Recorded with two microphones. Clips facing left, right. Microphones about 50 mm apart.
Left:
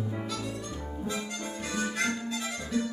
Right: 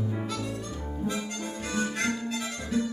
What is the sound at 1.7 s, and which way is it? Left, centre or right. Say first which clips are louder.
Harmonica: right 1 dB; centre.